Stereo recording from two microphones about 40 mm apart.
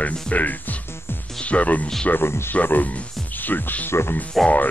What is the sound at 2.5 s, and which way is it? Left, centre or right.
Speech, left.